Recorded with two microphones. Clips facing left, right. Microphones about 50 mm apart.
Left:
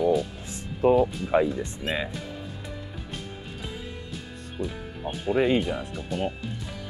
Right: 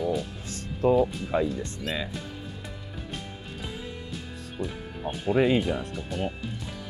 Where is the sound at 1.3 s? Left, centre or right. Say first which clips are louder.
Left 4 dB; left.